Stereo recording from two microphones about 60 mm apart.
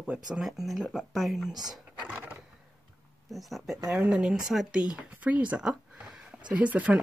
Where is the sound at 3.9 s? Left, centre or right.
Centre.